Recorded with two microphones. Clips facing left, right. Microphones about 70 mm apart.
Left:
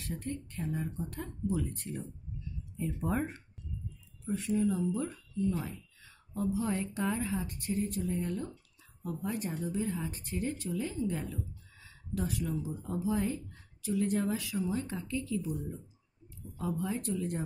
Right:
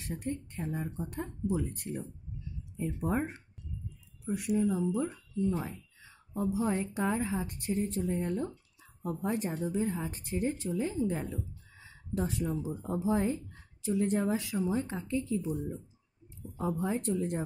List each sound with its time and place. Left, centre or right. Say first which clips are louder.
0.0 s a woman's voice: right 2 dB; right
16.5 s speech: right 3 dB; right